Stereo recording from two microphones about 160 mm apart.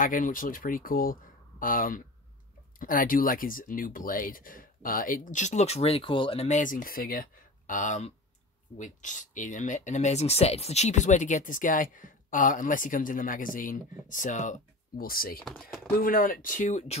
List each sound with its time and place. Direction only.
0.0 s speech: 60° left (ahead or behind)
15.4 s speech: 5° left (ahead or behind)
16.0 s speech: 60° left (ahead or behind)